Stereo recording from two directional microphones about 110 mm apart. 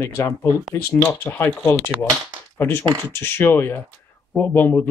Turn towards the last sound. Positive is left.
turn(degrees=20)  # may be behind; listen again after turning